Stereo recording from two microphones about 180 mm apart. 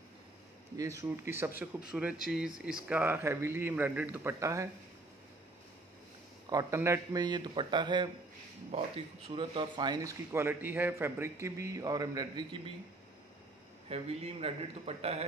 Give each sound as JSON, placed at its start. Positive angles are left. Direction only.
{"t": 0.7, "sound": "speech", "side_deg": -15}
{"t": 6.5, "sound": "speech", "side_deg": -20}
{"t": 13.8, "sound": "a man's voice", "side_deg": -35}